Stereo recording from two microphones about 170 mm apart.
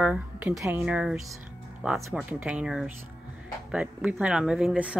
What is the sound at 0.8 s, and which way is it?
Speech, 5° right (ahead or behind).